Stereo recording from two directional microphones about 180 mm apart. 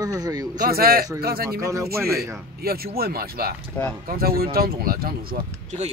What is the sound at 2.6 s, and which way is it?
Speech, 55° right (ahead or behind).